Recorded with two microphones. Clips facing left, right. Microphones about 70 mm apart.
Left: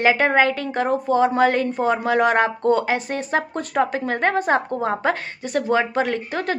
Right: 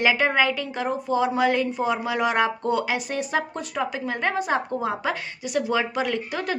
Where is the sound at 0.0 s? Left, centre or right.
Left.